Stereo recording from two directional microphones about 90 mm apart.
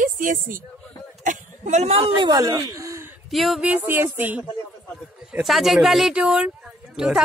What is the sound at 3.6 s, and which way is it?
Speech, 20° right (ahead or behind).